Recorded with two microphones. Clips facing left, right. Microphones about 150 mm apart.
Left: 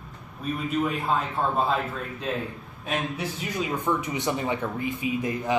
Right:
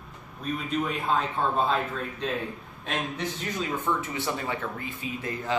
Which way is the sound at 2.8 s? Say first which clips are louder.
Left 2 dB; 10° left (ahead or behind).